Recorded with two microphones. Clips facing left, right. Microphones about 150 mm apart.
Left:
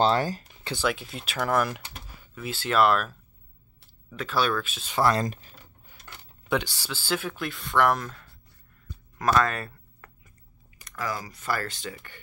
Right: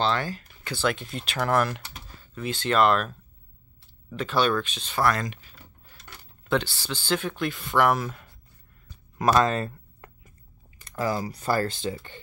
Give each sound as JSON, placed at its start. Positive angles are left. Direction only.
{"t": 0.0, "sound": "speech", "side_deg": 40}
{"t": 0.7, "sound": "speech", "side_deg": 5}
{"t": 4.9, "sound": "speech", "side_deg": 25}
{"t": 5.2, "sound": "speech", "side_deg": 40}
{"t": 6.5, "sound": "speech", "side_deg": 10}
{"t": 9.2, "sound": "a sound", "side_deg": -20}
{"t": 10.8, "sound": "speech", "side_deg": -30}